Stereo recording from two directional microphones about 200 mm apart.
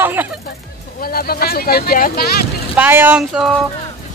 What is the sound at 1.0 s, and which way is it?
Speech, 50° left (ahead or behind).